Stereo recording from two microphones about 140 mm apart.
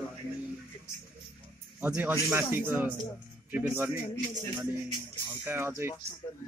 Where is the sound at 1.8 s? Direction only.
15° right (ahead or behind).